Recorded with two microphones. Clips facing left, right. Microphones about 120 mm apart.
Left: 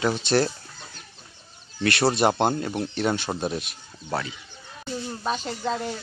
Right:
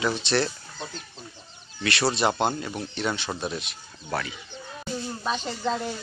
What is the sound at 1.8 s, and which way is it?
Speech, 50° left (ahead or behind).